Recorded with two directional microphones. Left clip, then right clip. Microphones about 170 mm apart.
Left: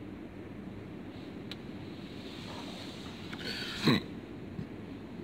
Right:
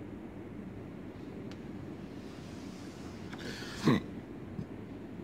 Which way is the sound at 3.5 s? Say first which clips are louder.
Left 2 dB; 5° right (ahead or behind).